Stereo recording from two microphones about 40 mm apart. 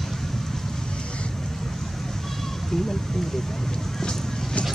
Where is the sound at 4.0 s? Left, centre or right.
Centre.